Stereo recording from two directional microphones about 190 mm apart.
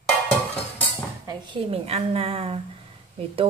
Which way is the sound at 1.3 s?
25° right (ahead or behind).